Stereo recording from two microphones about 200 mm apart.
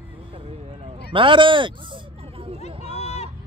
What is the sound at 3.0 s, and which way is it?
Honk, 35° left (ahead or behind).